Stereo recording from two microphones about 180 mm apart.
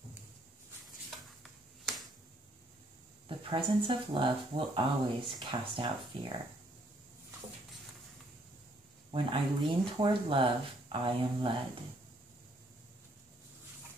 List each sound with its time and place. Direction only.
3.3 s speech: 30° right (ahead or behind)
9.1 s speech: 30° right (ahead or behind)